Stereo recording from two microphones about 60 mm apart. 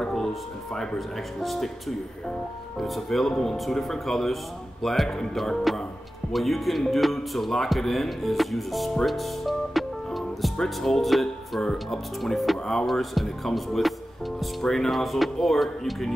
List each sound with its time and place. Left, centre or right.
0.0 s speech: centre